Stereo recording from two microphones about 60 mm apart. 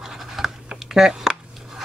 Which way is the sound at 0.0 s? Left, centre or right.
Centre.